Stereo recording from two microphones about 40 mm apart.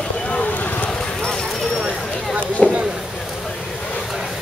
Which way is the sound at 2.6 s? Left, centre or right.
Left.